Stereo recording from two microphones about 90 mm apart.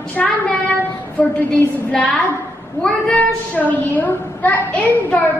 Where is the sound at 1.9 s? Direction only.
15° left (ahead or behind).